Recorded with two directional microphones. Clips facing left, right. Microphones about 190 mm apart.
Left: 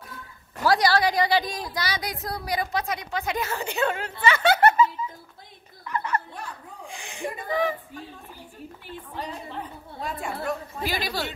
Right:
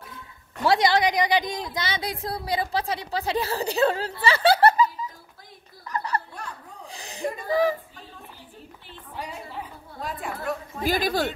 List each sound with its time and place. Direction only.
0.7 s a woman's voice: 20° right (ahead or behind)
4.2 s music: 35° right (ahead or behind)
5.9 s a sound: 35° right (ahead or behind)
9.1 s a woman's voice: 10° right (ahead or behind)
10.8 s speech: 50° right (ahead or behind)